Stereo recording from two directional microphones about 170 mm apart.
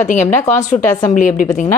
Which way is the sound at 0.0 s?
45° left (ahead or behind).